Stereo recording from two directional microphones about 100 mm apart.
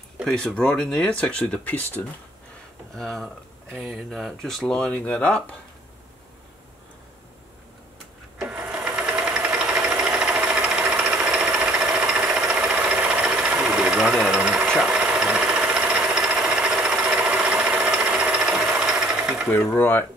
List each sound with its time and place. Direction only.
0.3 s speech: 10° left (ahead or behind)
3.0 s speech: centre (ahead or behind)
8.4 s sewing machine: 10° right (ahead or behind)
9.2 s engine: 10° right (ahead or behind)
9.8 s jackhammer: 10° right (ahead or behind)
12.7 s a sound: 15° right (ahead or behind)
13.7 s engine: 10° right (ahead or behind)
14.8 s a sound: 10° right (ahead or behind)
19.5 s speech: 20° left (ahead or behind)